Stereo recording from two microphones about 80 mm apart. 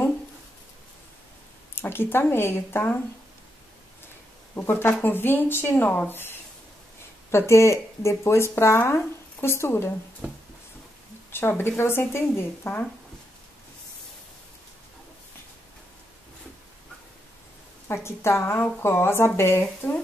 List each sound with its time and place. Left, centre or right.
1.8 s speech: left
4.6 s speech: left
11.3 s speech: left
17.8 s speech: left